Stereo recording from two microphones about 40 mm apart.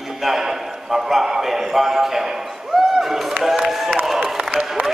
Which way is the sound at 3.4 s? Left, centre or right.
Centre.